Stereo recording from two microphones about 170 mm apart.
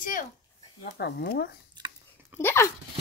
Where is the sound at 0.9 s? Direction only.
70° left (ahead or behind).